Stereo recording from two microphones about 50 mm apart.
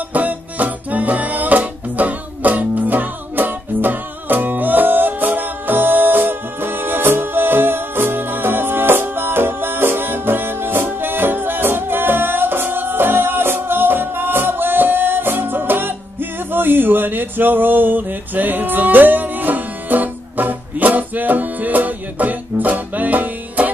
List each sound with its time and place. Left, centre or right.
0.1 s music: right